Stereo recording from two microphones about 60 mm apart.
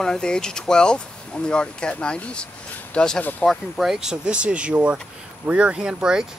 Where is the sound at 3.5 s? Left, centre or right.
Centre.